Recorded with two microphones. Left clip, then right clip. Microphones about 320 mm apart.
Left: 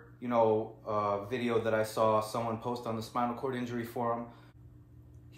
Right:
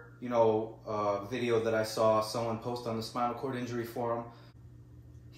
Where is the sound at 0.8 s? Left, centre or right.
Left.